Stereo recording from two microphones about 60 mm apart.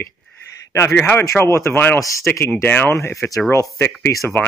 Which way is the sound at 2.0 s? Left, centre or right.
Left.